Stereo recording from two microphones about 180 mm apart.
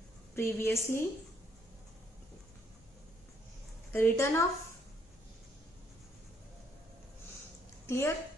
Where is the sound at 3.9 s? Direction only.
15° left (ahead or behind).